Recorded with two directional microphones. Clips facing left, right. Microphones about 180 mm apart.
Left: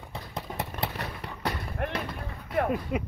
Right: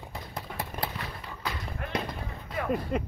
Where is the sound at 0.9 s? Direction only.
65° left (ahead or behind).